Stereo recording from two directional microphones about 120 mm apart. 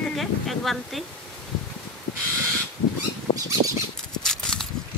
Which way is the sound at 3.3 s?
45° left (ahead or behind).